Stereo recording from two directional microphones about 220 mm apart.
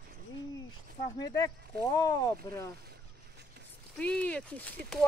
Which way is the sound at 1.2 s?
15° left (ahead or behind).